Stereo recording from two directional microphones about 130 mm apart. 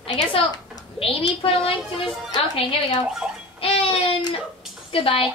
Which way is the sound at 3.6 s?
45° left (ahead or behind).